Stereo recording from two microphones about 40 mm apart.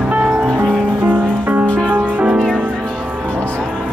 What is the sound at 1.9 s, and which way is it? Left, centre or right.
Music, right.